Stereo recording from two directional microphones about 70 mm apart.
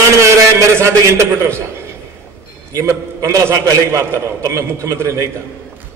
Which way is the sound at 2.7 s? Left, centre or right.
Right.